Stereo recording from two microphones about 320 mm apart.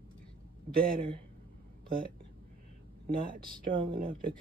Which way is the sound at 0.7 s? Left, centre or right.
Right.